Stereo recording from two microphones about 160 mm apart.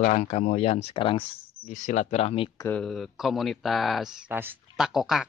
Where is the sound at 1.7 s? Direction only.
50° left (ahead or behind).